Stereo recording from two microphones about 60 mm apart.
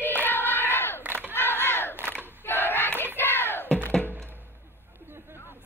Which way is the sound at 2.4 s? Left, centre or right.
Left.